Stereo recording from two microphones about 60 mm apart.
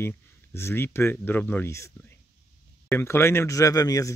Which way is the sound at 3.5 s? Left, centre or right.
Left.